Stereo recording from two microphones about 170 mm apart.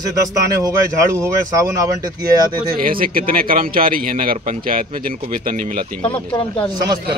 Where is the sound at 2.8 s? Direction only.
55° right (ahead or behind).